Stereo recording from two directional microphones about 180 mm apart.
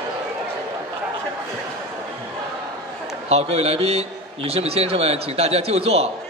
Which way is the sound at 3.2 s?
35° right (ahead or behind).